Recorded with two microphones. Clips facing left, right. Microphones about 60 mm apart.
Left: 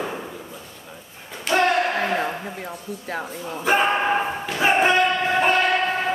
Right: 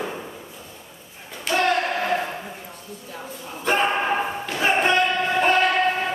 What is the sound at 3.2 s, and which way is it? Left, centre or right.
Speech, left.